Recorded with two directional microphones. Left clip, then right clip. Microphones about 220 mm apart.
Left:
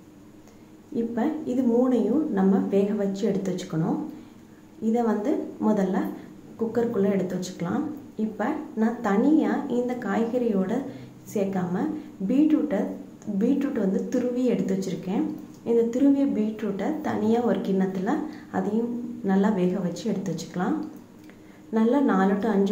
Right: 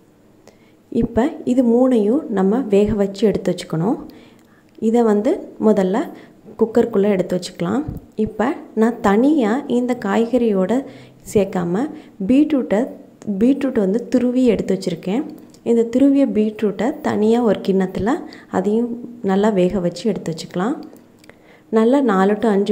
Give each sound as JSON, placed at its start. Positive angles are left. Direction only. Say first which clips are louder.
{"t": 0.9, "sound": "speech", "louder": "right 8 dB", "side_deg": -40}
{"t": 4.9, "sound": "speech", "louder": "right 9 dB", "side_deg": -40}
{"t": 21.7, "sound": "speech", "louder": "right 8 dB", "side_deg": -40}